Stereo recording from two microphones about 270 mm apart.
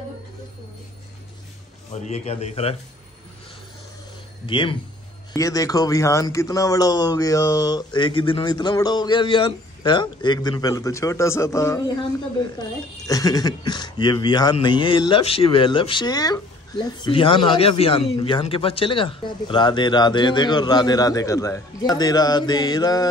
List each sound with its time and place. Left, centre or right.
1.9 s a man's voice: left
4.5 s speech: centre